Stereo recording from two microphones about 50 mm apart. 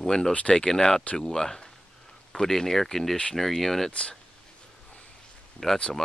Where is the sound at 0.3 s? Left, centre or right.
Left.